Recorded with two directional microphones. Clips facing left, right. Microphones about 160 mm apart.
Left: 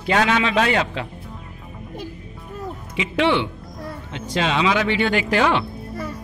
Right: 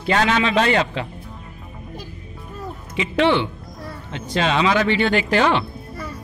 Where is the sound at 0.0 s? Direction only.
5° left (ahead or behind).